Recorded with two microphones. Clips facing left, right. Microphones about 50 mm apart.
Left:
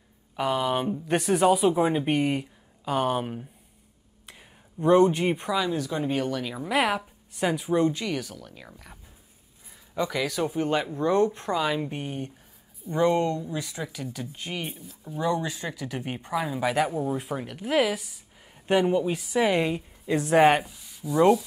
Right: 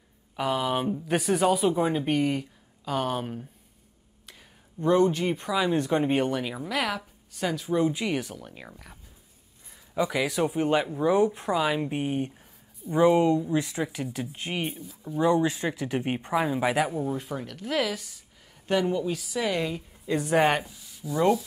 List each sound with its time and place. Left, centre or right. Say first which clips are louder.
0.4 s speech: left 1 dB; centre
4.3 s a sound: left 2 dB; centre
5.1 s speech: left 2 dB; centre
5.7 s speech: right 3 dB; right
6.7 s a woman's voice: left 6 dB; left
7.9 s speech: right 2 dB; centre
8.6 s speech: right 1 dB; centre
9.9 s speech: right 1 dB; centre
13.6 s speech: right 5 dB; right
14.7 s speech: right 3 dB; centre
15.1 s speech: right 4 dB; centre
16.4 s speech: left 3 dB; centre
17.1 s speech: left 2 dB; centre
20.1 s speech: left 3 dB; centre